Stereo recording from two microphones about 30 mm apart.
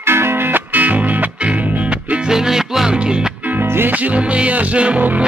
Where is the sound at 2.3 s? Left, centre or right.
Centre.